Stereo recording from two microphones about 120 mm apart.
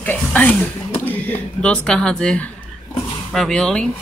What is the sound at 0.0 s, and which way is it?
Speech, 15° left (ahead or behind).